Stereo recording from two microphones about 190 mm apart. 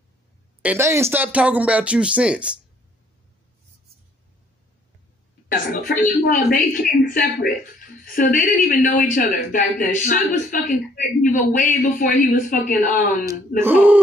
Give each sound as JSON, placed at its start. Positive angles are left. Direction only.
{"t": 0.6, "sound": "speech", "side_deg": -10}
{"t": 5.5, "sound": "a woman's voice", "side_deg": 50}
{"t": 13.6, "sound": "speech", "side_deg": -10}